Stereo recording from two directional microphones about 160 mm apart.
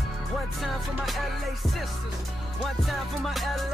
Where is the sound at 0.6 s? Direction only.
Centre (ahead or behind).